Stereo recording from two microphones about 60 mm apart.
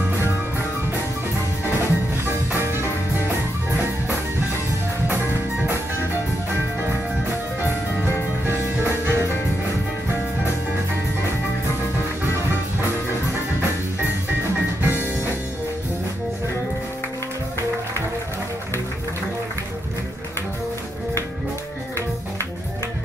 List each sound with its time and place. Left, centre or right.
1.8 s music: right
8.5 s music: right
14.9 s music: right